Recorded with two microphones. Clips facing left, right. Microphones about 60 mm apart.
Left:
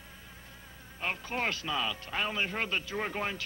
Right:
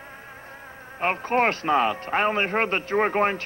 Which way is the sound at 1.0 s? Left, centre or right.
Right.